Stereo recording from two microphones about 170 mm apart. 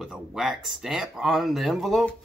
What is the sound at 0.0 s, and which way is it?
Speech, 5° right (ahead or behind).